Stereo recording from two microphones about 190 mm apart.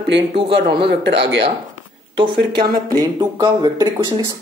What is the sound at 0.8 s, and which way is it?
Speech, 60° right (ahead or behind).